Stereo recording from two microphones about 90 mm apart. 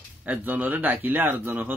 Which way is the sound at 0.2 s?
20° right (ahead or behind).